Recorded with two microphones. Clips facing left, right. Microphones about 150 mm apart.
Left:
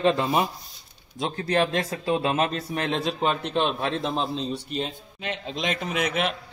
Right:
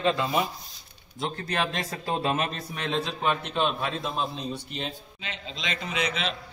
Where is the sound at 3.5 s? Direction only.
25° left (ahead or behind).